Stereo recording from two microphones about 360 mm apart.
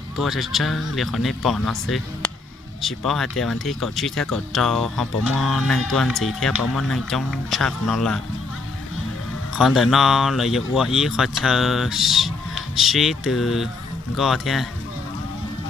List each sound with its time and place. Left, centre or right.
0.2 s speech: centre
9.6 s speech: centre